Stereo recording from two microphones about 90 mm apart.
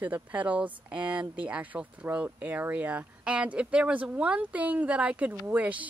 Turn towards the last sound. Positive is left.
turn(degrees=-15)  # may be behind; listen again after turning